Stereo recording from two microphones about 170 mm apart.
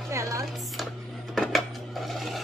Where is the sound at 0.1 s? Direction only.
20° right (ahead or behind).